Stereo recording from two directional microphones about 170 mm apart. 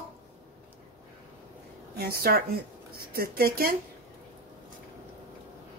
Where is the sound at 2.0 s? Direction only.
65° right (ahead or behind).